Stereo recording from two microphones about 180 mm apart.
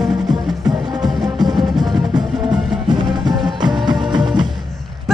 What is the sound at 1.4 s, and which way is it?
Music, 20° right (ahead or behind).